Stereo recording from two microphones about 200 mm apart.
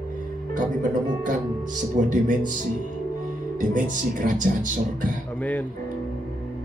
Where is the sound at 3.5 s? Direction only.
40° right (ahead or behind).